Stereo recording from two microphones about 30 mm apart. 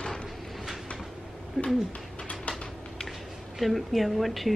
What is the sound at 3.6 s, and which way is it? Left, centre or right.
Speech, centre.